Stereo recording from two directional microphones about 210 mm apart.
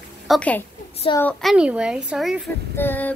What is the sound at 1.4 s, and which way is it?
A woman's voice, 5° right (ahead or behind).